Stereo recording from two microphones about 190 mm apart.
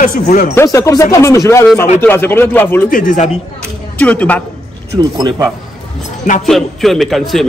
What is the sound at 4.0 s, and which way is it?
Speech, 5° left (ahead or behind).